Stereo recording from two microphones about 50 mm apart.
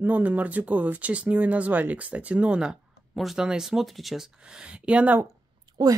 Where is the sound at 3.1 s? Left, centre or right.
Centre.